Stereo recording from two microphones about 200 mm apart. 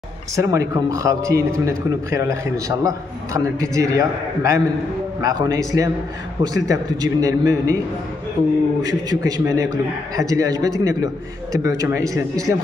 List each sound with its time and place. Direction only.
0.4 s a man's voice: 15° right (ahead or behind)
8.8 s a man's voice: 15° right (ahead or behind)